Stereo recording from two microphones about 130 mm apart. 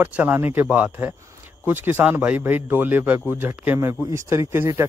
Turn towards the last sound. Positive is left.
turn(degrees=-20)  # may be behind; listen again after turning